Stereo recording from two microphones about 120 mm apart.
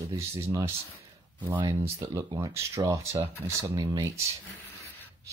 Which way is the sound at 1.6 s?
25° right (ahead or behind).